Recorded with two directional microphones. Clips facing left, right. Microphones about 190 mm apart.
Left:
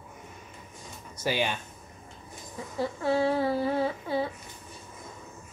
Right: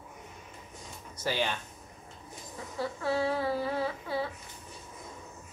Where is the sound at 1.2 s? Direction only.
15° left (ahead or behind).